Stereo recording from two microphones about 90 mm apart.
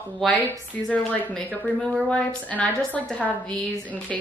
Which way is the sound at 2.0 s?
15° left (ahead or behind).